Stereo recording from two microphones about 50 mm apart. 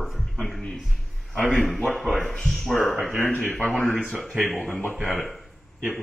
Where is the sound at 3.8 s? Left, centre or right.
Centre.